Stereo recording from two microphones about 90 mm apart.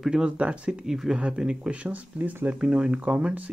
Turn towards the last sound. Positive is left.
turn(degrees=-15)  # may be behind; listen again after turning